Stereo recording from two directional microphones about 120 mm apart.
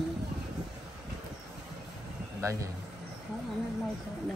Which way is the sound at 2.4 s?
25° right (ahead or behind).